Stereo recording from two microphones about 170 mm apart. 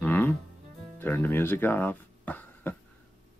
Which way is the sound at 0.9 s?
10° left (ahead or behind).